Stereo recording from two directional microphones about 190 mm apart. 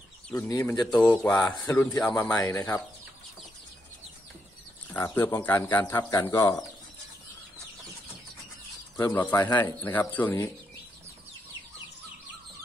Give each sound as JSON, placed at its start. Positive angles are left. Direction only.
{"t": 0.5, "sound": "speech", "side_deg": 15}
{"t": 1.2, "sound": "speech", "side_deg": 5}
{"t": 4.9, "sound": "speech", "side_deg": 10}
{"t": 8.9, "sound": "speech", "side_deg": 10}